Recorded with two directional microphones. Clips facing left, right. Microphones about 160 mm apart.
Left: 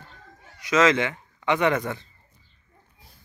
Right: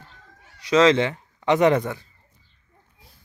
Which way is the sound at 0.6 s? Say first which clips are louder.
Right 3 dB; 30° right (ahead or behind).